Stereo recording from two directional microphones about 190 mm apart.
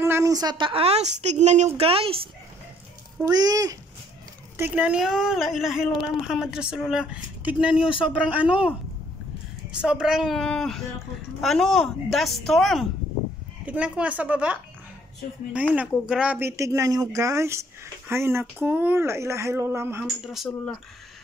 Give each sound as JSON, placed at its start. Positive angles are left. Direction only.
{"t": 0.0, "sound": "a woman's voice", "side_deg": -15}
{"t": 3.2, "sound": "speech", "side_deg": -20}
{"t": 4.6, "sound": "a woman's voice", "side_deg": -10}
{"t": 7.8, "sound": "speech", "side_deg": 25}
{"t": 8.1, "sound": "speech", "side_deg": -5}
{"t": 9.8, "sound": "a woman's voice", "side_deg": -5}
{"t": 20.0, "sound": "a woman's voice", "side_deg": 0}